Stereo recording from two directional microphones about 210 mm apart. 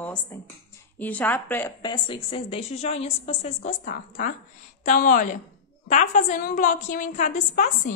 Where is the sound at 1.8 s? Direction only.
25° left (ahead or behind).